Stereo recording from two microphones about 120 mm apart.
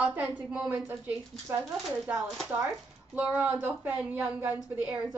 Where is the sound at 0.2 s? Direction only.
5° right (ahead or behind).